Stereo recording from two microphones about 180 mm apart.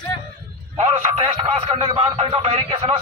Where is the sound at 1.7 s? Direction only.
30° right (ahead or behind).